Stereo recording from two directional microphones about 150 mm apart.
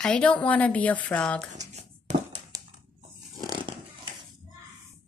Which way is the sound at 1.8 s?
50° right (ahead or behind).